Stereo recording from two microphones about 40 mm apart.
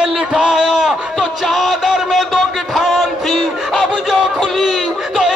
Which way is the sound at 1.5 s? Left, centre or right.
Centre.